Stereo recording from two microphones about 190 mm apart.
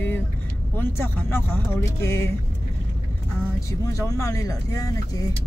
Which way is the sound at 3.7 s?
15° left (ahead or behind).